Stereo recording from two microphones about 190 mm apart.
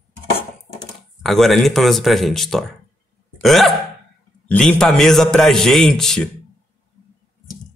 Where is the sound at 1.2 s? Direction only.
Centre (ahead or behind).